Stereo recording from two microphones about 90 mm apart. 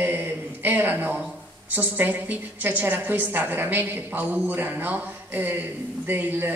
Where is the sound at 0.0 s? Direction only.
20° right (ahead or behind).